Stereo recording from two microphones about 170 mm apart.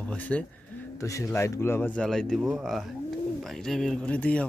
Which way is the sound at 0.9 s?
20° left (ahead or behind).